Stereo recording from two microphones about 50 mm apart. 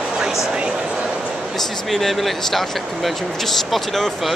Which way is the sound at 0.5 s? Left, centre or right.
Right.